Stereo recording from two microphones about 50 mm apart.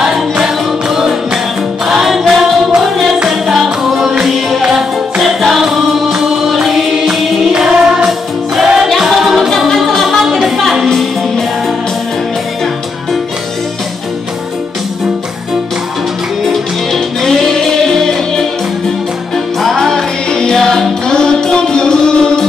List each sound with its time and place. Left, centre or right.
0.0 s music: centre
1.9 s a capella: centre
3.3 s music: centre
16.4 s music: centre
19.8 s music: centre